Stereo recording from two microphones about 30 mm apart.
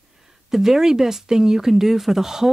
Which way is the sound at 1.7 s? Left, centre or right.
Centre.